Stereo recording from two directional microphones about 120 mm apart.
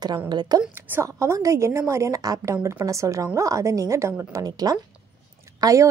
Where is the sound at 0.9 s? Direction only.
15° right (ahead or behind).